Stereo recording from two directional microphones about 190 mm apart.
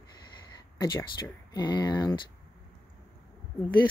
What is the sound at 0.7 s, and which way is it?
Speech, 20° left (ahead or behind).